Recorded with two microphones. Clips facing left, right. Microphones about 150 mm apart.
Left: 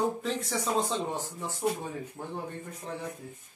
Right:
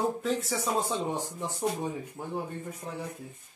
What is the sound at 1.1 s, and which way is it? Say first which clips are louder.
Speech: right 2 dB; 15° right (ahead or behind).